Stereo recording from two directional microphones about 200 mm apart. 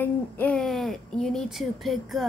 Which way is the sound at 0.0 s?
5° left (ahead or behind).